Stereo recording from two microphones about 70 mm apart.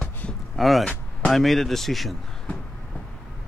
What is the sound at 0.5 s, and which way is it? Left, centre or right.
Speech, centre.